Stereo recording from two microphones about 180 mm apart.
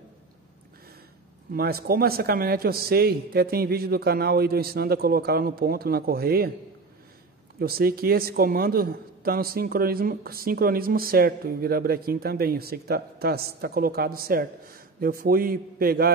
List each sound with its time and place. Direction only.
1.5 s a man's voice: 55° right (ahead or behind)
7.5 s a man's voice: 55° right (ahead or behind)